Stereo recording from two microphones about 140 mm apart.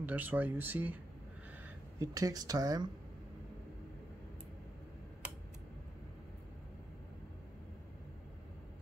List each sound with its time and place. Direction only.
0.0 s speech: 10° right (ahead or behind)
2.0 s speech: 25° right (ahead or behind)